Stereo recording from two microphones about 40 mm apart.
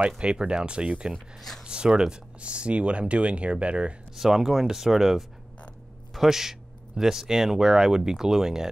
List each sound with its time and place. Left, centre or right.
0.2 s speech: right
4.1 s speech: centre